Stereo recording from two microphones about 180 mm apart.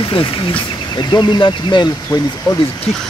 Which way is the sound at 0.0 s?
30° left (ahead or behind).